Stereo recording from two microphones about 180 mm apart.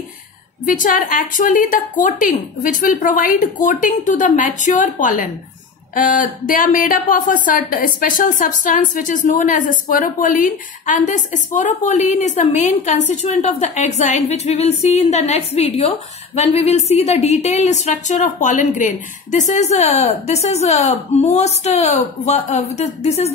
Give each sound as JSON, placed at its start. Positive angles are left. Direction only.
{"t": 0.7, "sound": "a woman's voice", "side_deg": 50}